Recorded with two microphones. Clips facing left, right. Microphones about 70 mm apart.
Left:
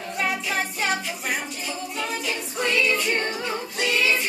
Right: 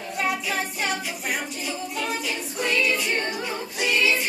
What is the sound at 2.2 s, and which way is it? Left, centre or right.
Music, centre.